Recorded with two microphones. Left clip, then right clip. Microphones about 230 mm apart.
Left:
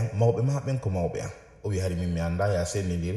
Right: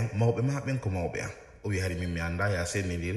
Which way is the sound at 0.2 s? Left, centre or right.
Centre.